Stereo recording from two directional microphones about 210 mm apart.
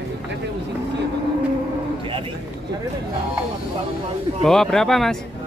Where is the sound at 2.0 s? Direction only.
25° right (ahead or behind).